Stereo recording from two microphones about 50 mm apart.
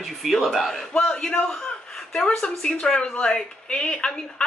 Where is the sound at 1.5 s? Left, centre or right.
Centre.